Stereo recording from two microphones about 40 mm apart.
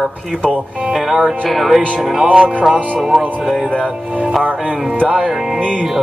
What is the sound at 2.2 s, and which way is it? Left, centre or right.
Music, centre.